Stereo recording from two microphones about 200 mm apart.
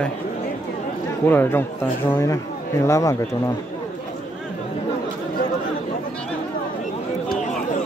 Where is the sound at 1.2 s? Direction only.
10° left (ahead or behind).